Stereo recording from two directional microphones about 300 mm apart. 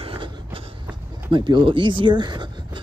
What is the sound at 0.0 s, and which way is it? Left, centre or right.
Train, centre.